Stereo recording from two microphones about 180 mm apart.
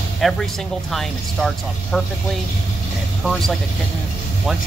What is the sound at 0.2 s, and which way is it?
Speech, centre (ahead or behind).